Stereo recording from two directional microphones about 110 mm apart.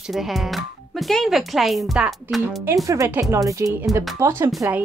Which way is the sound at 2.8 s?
30° right (ahead or behind).